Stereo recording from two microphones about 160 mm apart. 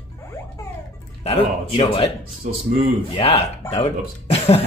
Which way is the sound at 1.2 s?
40° left (ahead or behind).